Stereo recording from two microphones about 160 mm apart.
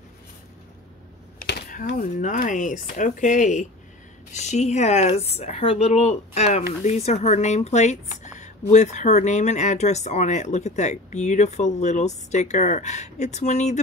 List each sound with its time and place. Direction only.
1.4 s typing: 85° left
2.0 s speech: 55° left (ahead or behind)